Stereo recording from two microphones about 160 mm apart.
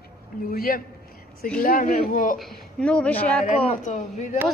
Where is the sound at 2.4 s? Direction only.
5° left (ahead or behind).